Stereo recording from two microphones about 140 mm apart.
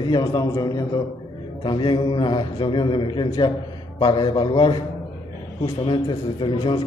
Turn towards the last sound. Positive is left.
turn(degrees=35)  # may be behind; listen again after turning